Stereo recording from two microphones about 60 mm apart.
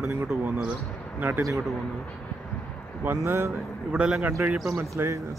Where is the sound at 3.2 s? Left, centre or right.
Right.